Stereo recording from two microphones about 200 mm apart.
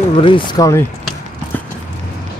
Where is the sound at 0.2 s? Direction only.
25° left (ahead or behind).